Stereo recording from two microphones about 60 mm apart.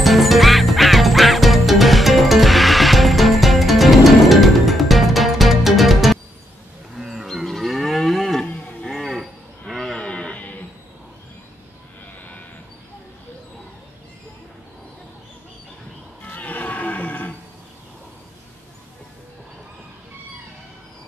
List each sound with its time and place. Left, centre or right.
0.0 s quack: centre
7.0 s moo: centre
8.5 s livestock: left
8.8 s cattle: centre
9.9 s a sound: centre
16.3 s a sound: left